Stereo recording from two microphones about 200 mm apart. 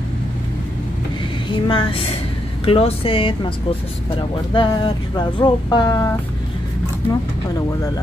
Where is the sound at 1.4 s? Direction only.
25° left (ahead or behind).